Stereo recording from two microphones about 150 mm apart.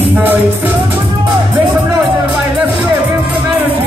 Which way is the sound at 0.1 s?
10° right (ahead or behind).